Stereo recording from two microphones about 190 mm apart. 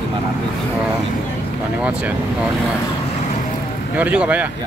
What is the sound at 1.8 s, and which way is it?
Vehicle, 5° right (ahead or behind).